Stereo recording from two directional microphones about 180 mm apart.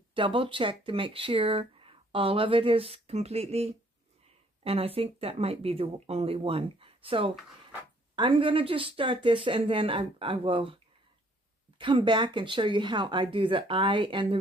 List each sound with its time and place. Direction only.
0.1 s speech: 30° right (ahead or behind)
11.8 s speech: 25° right (ahead or behind)